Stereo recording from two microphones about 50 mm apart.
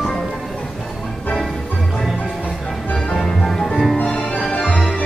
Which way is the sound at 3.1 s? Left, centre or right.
Centre.